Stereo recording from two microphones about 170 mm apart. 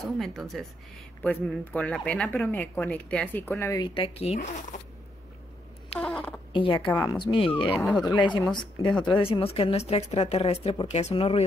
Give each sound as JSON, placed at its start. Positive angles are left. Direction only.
{"t": 0.2, "sound": "a woman's voice", "side_deg": 0}
{"t": 3.9, "sound": "a woman's voice", "side_deg": 35}
{"t": 5.9, "sound": "a sound", "side_deg": 5}
{"t": 6.5, "sound": "a woman's voice", "side_deg": 30}
{"t": 7.6, "sound": "speech", "side_deg": 5}
{"t": 8.0, "sound": "a woman's voice", "side_deg": 25}